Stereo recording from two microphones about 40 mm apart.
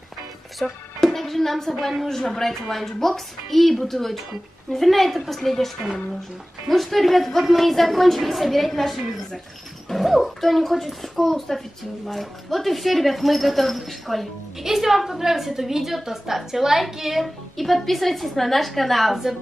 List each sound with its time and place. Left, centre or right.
0.6 s speech: left
1.0 s a woman's voice: centre
2.0 s a man's voice: centre
6.7 s a woman's voice: centre
9.8 s a sound: centre
10.4 s a woman's voice: centre